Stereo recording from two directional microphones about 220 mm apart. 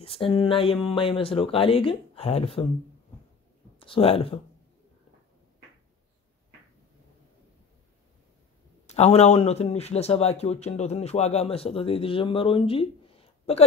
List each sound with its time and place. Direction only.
0.0 s speech: 25° left (ahead or behind)
3.8 s speech: 25° left (ahead or behind)
8.8 s speech: 30° left (ahead or behind)